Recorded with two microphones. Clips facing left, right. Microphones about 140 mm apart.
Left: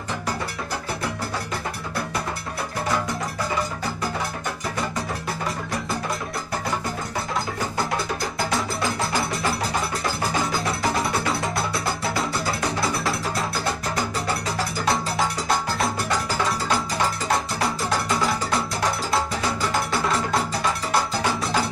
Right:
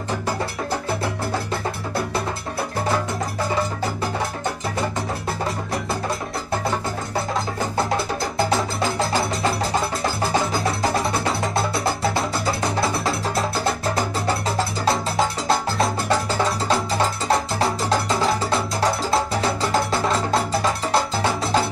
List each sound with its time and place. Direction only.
10.5 s music: centre (ahead or behind)
11.2 s music: 25° right (ahead or behind)
14.9 s music: 25° right (ahead or behind)
17.3 s music: 25° right (ahead or behind)
19.9 s music: 25° right (ahead or behind)